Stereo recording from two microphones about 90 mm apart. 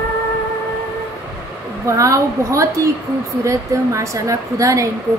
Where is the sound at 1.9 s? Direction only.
35° right (ahead or behind).